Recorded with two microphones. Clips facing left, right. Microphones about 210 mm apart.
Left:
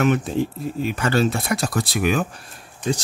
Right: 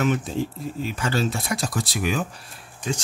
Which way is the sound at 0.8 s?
60° left (ahead or behind).